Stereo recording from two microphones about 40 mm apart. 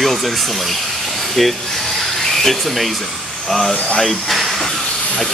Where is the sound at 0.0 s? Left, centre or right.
Centre.